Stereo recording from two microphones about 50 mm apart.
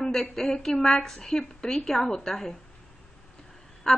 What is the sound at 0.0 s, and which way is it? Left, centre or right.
A woman's voice, centre.